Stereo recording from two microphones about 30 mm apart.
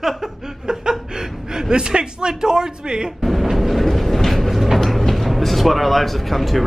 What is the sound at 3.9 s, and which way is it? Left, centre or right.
Train, centre.